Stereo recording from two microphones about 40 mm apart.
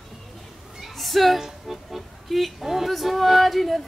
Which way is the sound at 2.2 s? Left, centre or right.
Centre.